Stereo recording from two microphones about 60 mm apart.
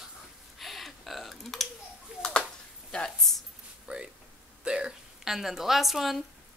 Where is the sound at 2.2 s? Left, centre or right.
Centre.